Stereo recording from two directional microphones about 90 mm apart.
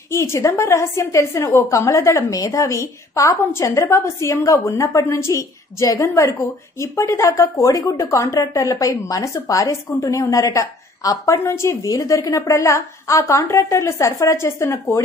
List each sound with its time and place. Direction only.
0.1 s a woman's voice: 30° left (ahead or behind)